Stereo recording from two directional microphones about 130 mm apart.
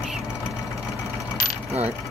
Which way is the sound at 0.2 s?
25° left (ahead or behind).